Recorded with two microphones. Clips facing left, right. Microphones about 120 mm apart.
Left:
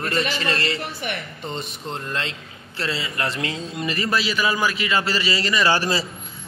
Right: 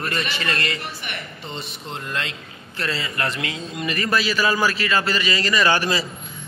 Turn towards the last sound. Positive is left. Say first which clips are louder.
# even
turn(degrees=35)  # may be behind; listen again after turning